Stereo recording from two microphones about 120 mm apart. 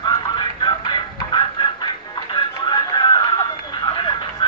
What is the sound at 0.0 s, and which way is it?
Music, 40° left (ahead or behind).